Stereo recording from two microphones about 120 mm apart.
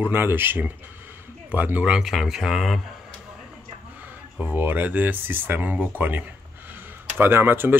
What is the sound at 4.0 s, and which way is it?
Speech, 15° right (ahead or behind).